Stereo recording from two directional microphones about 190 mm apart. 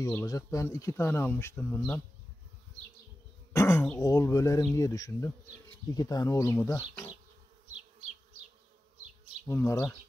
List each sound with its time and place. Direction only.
0.0 s speech: 15° left (ahead or behind)
3.5 s speech: 15° left (ahead or behind)
9.5 s speech: 15° left (ahead or behind)